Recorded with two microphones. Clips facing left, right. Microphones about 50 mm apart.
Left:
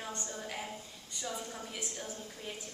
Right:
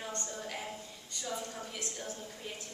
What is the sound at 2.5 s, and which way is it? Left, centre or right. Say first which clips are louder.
Speech: left 1 dB; centre.